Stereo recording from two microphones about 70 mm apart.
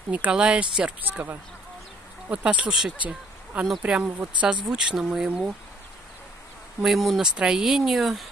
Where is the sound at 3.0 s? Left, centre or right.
Centre.